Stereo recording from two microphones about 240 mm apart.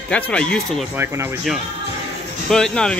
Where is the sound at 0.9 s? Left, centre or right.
Centre.